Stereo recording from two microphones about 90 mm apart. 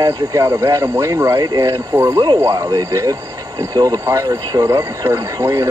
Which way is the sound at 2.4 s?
35° right (ahead or behind).